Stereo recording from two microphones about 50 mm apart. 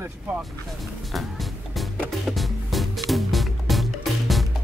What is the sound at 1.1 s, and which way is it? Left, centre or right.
Music, centre.